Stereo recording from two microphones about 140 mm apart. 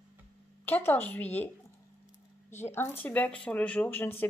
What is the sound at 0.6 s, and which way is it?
Speech, 15° left (ahead or behind).